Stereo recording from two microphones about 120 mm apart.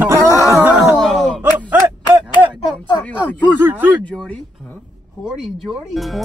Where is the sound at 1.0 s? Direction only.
5° left (ahead or behind).